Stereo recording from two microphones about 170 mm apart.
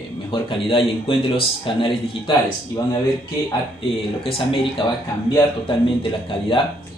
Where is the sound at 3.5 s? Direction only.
30° left (ahead or behind).